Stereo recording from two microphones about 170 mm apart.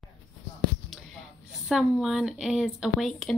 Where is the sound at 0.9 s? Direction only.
Centre (ahead or behind).